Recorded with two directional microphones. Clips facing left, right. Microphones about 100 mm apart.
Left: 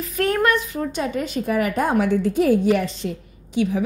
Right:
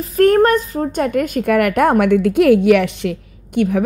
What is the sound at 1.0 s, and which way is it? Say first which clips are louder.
A woman's voice: right 7 dB; 55° right (ahead or behind).